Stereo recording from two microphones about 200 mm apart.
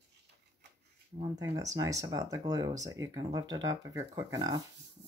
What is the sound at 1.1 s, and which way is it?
Speech, 20° right (ahead or behind).